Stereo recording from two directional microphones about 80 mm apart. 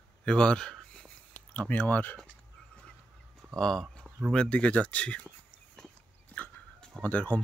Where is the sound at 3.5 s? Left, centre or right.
Centre.